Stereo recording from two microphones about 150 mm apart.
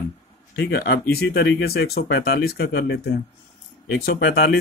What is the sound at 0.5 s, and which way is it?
Speech, 90° left.